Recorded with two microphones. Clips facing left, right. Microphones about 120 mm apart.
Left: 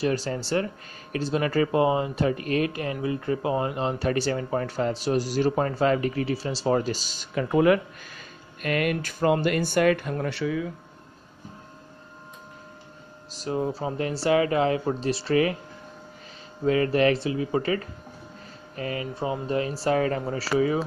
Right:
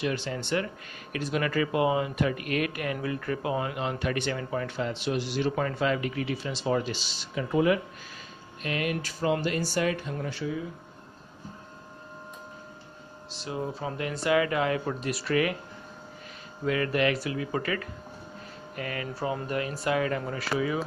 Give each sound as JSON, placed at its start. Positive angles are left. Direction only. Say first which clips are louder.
{"t": 0.0, "sound": "speech", "louder": "left 4 dB", "side_deg": 40}
{"t": 13.3, "sound": "speech", "louder": "left 6 dB", "side_deg": 40}
{"t": 16.6, "sound": "speech", "louder": "left 5 dB", "side_deg": 30}